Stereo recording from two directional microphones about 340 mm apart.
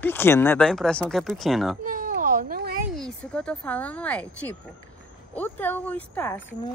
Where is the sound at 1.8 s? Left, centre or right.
Right.